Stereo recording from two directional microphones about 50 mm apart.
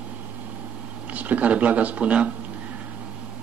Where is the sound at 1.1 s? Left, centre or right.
Right.